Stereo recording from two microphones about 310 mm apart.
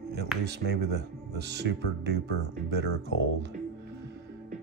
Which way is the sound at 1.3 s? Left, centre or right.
Right.